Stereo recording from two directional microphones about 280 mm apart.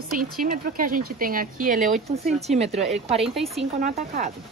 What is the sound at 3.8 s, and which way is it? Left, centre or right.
Speech, right.